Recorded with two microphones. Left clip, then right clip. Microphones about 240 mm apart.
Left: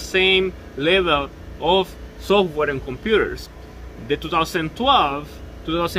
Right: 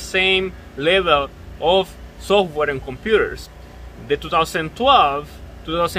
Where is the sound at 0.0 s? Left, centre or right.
Centre.